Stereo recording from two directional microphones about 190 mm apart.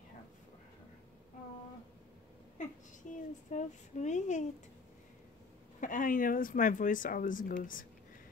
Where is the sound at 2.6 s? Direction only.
40° left (ahead or behind).